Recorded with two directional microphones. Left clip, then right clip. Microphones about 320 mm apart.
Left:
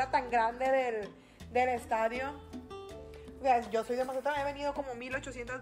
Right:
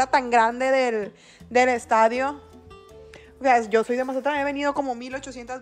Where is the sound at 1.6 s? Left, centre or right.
Right.